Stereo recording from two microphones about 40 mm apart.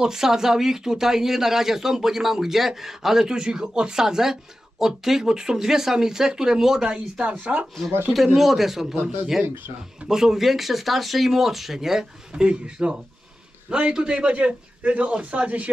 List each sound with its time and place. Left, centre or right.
0.0 s speech: centre
7.2 s speech: right
8.4 s speech: centre
10.0 s speech: centre
12.4 s a man's voice: right